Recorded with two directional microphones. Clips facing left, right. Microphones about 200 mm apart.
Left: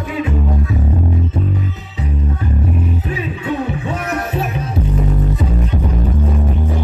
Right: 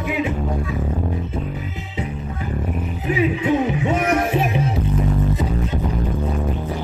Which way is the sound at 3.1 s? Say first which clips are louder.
Right 4 dB; 20° right (ahead or behind).